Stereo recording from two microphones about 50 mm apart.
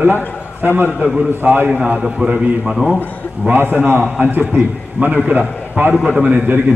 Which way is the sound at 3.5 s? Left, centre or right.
Right.